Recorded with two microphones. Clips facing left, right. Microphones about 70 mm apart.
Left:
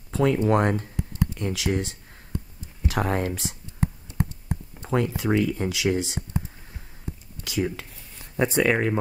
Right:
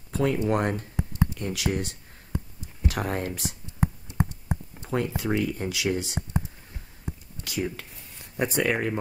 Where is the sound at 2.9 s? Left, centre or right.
Left.